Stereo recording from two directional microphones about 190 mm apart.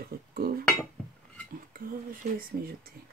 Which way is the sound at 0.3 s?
50° right (ahead or behind).